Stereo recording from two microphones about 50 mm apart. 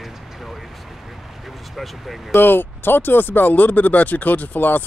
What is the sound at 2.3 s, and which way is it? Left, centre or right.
Speech, left.